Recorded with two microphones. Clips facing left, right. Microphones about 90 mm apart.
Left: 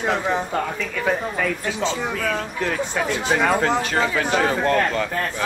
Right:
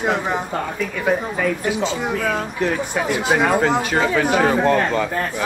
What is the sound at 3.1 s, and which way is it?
Speech, 15° right (ahead or behind).